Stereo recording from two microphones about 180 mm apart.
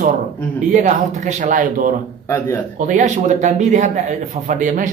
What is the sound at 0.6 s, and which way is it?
Speech, 45° right (ahead or behind).